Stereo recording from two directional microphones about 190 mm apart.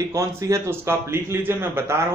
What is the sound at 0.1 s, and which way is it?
A man's voice, 15° right (ahead or behind).